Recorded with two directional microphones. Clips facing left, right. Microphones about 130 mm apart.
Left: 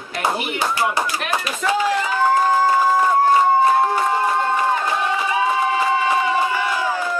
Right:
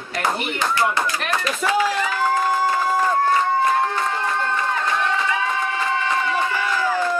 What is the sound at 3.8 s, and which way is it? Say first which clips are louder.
Crowd: left 4 dB; 15° left (ahead or behind).